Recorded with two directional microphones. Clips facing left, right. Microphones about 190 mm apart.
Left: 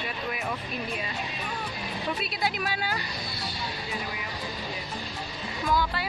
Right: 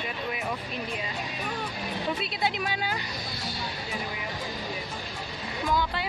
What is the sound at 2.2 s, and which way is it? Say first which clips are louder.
Speech: right 1 dB; 25° right (ahead or behind).